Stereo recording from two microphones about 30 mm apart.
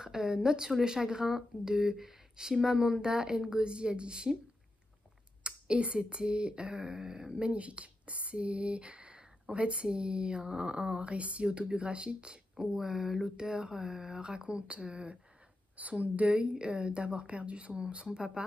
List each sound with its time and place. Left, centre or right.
0.0 s a woman's voice: right
5.4 s a woman's voice: right
7.3 s a woman's voice: right
11.4 s a woman's voice: right
12.5 s speech: centre
13.4 s a woman's voice: right
15.7 s a woman's voice: right
18.0 s a woman's voice: right